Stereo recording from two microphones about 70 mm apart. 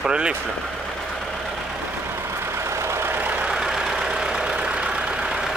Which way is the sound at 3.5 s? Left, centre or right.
Centre.